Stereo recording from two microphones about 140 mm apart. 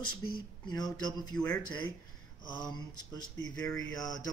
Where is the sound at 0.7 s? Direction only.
30° left (ahead or behind).